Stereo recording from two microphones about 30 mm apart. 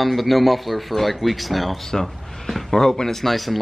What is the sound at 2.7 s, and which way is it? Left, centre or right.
Speech, centre.